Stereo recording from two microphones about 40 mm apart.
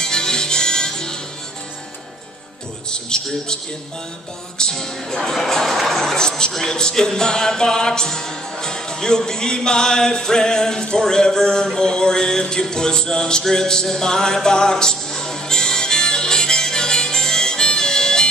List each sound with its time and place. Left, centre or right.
0.0 s music: centre
2.9 s music: centre
4.6 s music: centre
5.9 s speech: centre
6.5 s music: centre